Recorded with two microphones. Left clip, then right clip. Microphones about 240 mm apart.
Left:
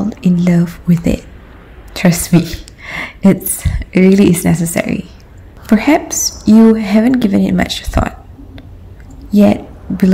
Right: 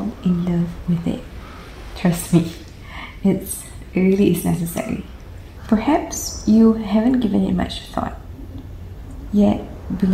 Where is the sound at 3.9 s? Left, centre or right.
Left.